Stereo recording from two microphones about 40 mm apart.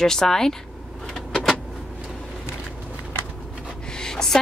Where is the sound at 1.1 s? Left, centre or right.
Centre.